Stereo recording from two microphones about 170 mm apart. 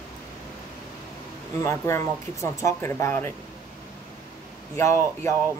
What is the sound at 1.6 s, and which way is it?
Speech, 15° left (ahead or behind).